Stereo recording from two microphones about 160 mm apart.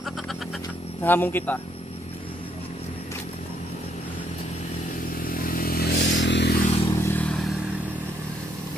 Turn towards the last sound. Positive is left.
turn(degrees=5)  # may be behind; listen again after turning